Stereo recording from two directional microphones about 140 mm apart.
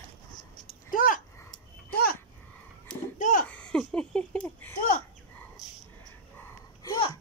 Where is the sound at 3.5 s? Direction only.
5° left (ahead or behind).